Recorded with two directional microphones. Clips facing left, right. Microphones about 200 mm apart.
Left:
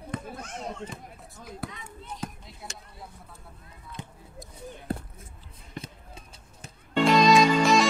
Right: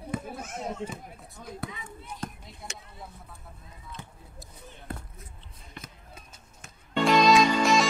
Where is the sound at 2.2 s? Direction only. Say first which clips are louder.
Even; 5° left (ahead or behind).